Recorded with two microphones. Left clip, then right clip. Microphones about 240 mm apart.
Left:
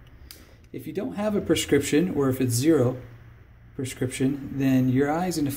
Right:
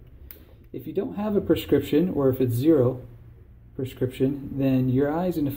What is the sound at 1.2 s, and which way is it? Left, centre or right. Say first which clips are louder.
Speech: even; left.